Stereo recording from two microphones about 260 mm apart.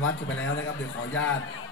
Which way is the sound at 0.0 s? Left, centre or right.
Left.